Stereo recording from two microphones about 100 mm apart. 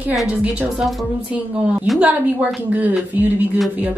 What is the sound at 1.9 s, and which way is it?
Music, centre (ahead or behind).